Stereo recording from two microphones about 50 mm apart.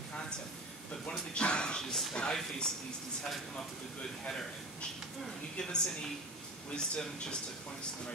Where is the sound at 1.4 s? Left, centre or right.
Centre.